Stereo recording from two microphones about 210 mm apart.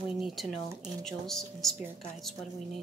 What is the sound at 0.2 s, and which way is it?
Speech, centre (ahead or behind).